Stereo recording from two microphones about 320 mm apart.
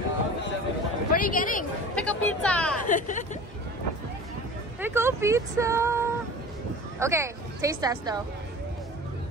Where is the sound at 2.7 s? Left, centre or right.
Left.